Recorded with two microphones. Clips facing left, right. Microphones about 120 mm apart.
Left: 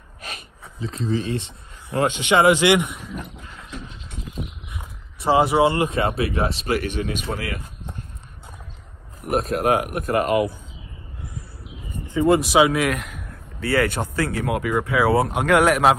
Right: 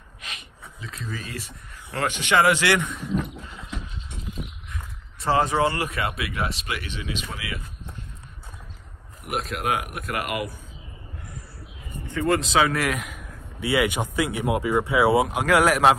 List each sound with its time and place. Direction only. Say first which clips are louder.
0.2 s speech: left 4 dB; 35° left (ahead or behind); by 3.0 s 20° left (ahead or behind)
4.7 s speech: left 1 dB; 15° left (ahead or behind); by 7.6 s 45° left (ahead or behind)
9.3 s speech: left 7 dB; 35° left (ahead or behind)
12.1 s a man's voice: left 5 dB; 15° left (ahead or behind); by 15.2 s 20° right (ahead or behind)
15.2 s speech: left 2 dB; centre (ahead or behind)